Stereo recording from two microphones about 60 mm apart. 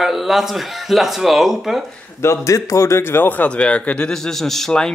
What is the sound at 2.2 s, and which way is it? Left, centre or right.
A man's voice, left.